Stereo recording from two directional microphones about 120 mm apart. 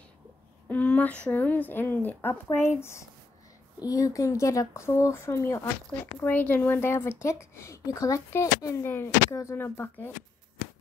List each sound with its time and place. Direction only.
0.7 s a woman's voice: 15° left (ahead or behind)